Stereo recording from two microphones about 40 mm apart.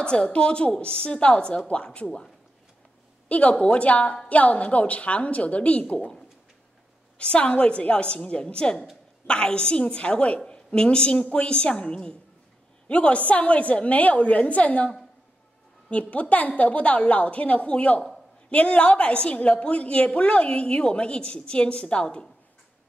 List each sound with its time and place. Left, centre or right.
0.0 s a woman's voice: left
3.3 s a woman's voice: left
7.2 s a woman's voice: left
15.9 s a woman's voice: left